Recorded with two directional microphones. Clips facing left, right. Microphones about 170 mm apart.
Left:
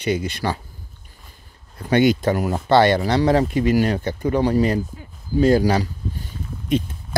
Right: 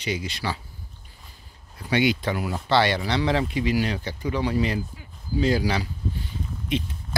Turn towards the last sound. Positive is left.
turn(degrees=45)  # may be behind; listen again after turning